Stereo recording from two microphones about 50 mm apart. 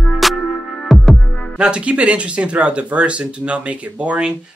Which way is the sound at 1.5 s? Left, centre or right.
Centre.